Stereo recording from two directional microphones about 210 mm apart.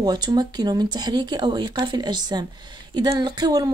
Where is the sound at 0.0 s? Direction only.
20° right (ahead or behind).